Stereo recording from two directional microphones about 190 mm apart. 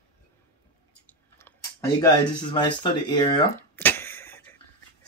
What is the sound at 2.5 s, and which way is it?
Speech, 25° left (ahead or behind).